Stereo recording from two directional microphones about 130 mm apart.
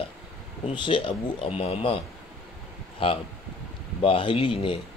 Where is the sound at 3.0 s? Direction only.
40° left (ahead or behind).